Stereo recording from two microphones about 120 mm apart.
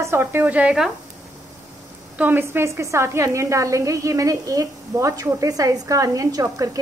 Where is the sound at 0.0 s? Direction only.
20° right (ahead or behind).